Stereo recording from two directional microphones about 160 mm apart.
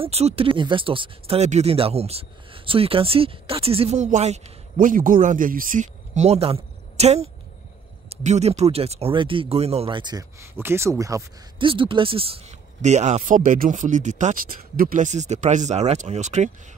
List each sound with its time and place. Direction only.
0.0 s speech: 40° right (ahead or behind); by 11.2 s 20° right (ahead or behind)
11.5 s speech: 30° right (ahead or behind)